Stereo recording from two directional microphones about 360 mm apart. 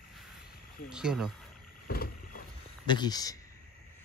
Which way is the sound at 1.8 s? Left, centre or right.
Left.